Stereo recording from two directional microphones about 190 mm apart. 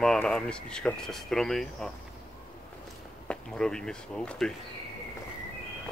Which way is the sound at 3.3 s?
5° left (ahead or behind).